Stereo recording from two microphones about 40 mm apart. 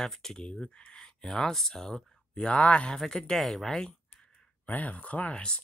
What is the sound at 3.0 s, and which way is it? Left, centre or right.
Speech, centre.